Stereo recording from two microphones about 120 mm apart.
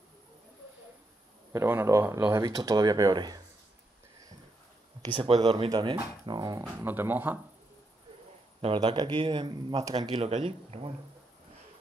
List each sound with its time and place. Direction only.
1.5 s speech: 20° right (ahead or behind)
2.4 s speech: 30° right (ahead or behind)
5.0 s speech: 40° right (ahead or behind)
6.8 s speech: 15° right (ahead or behind)
8.7 s speech: 35° right (ahead or behind)
10.2 s speech: 60° right (ahead or behind)